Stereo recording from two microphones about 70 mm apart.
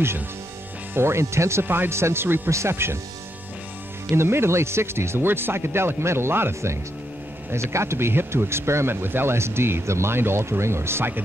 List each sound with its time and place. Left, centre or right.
0.9 s speech: right
4.1 s speech: right